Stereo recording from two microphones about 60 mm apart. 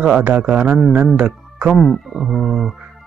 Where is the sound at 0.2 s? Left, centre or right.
Right.